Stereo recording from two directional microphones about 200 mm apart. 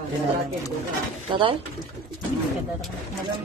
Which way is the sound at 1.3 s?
25° right (ahead or behind).